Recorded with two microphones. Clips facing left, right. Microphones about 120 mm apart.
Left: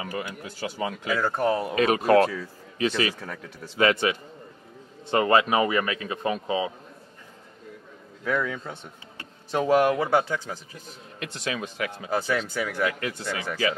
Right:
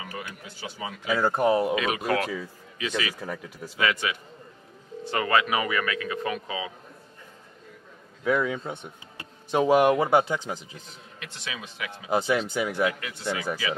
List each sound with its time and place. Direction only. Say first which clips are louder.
0.0 s a man's voice: left 5 dB; 50° left (ahead or behind)
1.0 s speech: right 3 dB; 15° right (ahead or behind)
1.8 s a man's voice: left 7 dB; 40° left (ahead or behind)
3.2 s speech: right 3 dB; 10° right (ahead or behind)
3.7 s a man's voice: left 5 dB; 35° left (ahead or behind)
5.0 s a man's voice: left 4 dB; 25° left (ahead or behind)
8.2 s speech: right 2 dB; 15° right (ahead or behind)
11.1 s a man's voice: left 7 dB; 45° left (ahead or behind)
12.1 s speech: right 3 dB; 20° right (ahead or behind)